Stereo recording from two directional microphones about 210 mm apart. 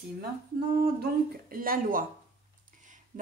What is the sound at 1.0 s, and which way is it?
Speech, 45° right (ahead or behind).